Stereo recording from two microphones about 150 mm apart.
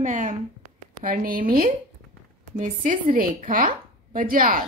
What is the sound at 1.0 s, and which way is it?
Speech, 70° right (ahead or behind).